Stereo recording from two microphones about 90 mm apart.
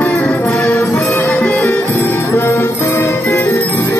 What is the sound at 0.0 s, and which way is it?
Music, 15° left (ahead or behind).